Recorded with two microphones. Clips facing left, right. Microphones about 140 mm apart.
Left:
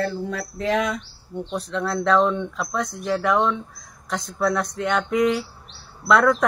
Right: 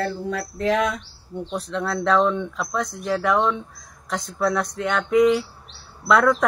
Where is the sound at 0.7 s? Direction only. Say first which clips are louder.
Right 1 dB; 50° right (ahead or behind).